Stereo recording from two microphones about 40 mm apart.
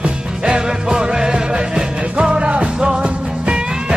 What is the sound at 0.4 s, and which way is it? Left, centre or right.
Music, centre.